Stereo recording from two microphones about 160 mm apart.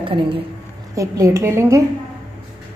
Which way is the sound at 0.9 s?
20° right (ahead or behind).